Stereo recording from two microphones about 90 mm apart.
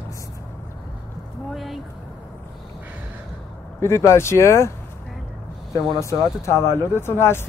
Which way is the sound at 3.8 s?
30° left (ahead or behind).